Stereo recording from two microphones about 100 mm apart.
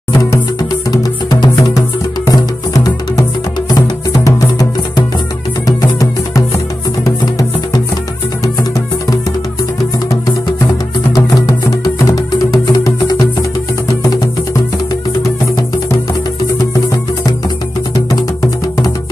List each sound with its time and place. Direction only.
0.1 s music: 40° left (ahead or behind)
11.1 s music: 35° left (ahead or behind)